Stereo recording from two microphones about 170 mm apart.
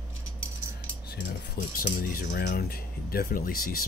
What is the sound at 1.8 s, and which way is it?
Speech, 55° left (ahead or behind).